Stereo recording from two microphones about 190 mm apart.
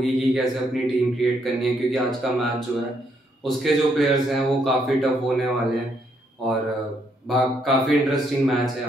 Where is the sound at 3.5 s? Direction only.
Centre (ahead or behind).